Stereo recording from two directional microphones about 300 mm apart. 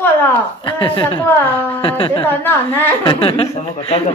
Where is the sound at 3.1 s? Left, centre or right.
Centre.